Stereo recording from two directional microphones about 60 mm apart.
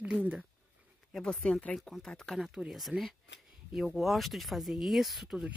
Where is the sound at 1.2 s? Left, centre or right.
Centre.